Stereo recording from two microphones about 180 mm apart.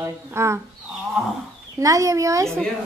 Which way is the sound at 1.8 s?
20° right (ahead or behind).